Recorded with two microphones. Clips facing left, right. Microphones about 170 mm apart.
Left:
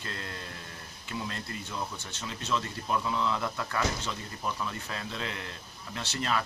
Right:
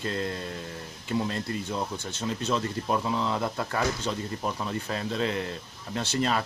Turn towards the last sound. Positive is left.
turn(degrees=-30)  # may be behind; listen again after turning